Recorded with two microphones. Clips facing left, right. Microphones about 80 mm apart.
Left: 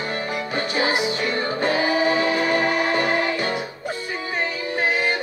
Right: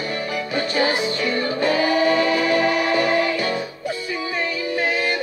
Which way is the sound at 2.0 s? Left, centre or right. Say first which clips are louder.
Right 2 dB; left.